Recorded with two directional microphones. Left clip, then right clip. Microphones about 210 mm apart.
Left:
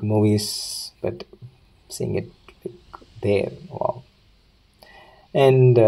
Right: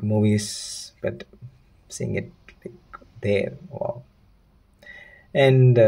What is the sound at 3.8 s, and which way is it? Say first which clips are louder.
Stomach rumble: left 4 dB; 20° left (ahead or behind).